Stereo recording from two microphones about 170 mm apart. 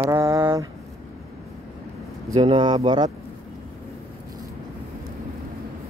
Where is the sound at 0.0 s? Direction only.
20° right (ahead or behind).